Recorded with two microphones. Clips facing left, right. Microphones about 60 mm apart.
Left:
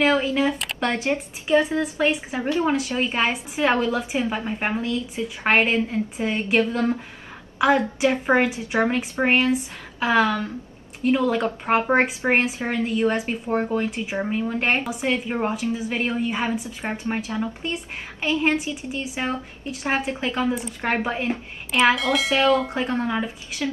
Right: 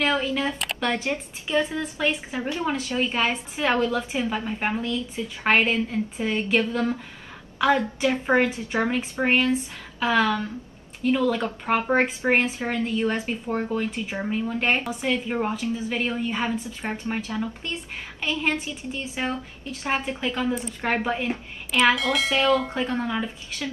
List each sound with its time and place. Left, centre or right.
0.0 s speech: left
0.6 s a sound: centre
0.8 s a woman's voice: left
6.6 s speech: left
7.5 s a woman's voice: centre
15.2 s a woman's voice: centre
21.9 s speech: centre
22.8 s a woman's voice: left
23.6 s a woman's voice: centre